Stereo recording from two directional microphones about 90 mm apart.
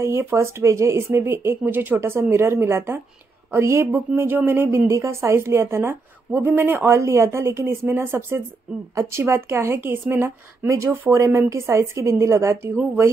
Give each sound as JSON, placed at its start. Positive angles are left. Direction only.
{"t": 0.0, "sound": "a woman's voice", "side_deg": -30}